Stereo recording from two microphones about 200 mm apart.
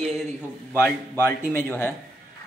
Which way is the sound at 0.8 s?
10° left (ahead or behind).